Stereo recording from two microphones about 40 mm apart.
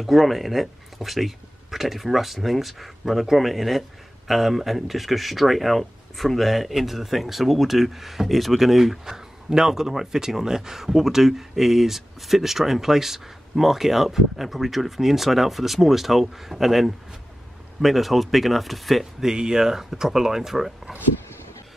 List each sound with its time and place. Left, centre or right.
0.0 s speech: centre
19.2 s speech: centre